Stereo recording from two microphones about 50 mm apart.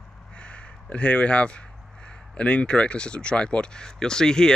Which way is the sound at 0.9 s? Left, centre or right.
Left.